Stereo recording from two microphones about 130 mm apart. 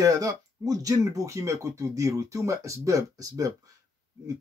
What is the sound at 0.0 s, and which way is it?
Speech, 25° right (ahead or behind).